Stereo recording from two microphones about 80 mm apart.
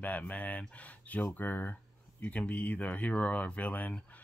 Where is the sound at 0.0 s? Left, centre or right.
Centre.